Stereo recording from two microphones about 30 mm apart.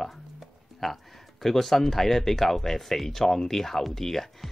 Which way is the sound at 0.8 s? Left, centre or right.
Centre.